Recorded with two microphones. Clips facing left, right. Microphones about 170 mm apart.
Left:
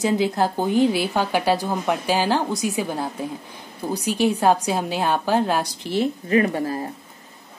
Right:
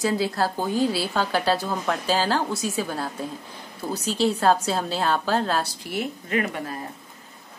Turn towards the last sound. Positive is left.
turn(degrees=35)  # may be behind; listen again after turning